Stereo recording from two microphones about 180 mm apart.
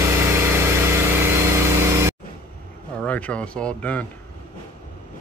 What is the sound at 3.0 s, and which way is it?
Speech, 5° left (ahead or behind).